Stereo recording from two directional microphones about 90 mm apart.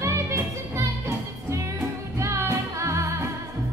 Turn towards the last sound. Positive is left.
turn(degrees=-35)  # may be behind; listen again after turning